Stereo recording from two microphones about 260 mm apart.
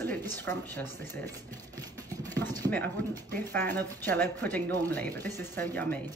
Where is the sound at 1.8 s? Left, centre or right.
Centre.